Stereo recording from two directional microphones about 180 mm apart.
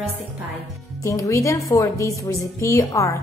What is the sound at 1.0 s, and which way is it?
A woman's voice, 15° left (ahead or behind).